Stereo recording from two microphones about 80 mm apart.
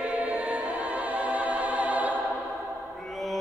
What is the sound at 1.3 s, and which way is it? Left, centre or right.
Music, centre.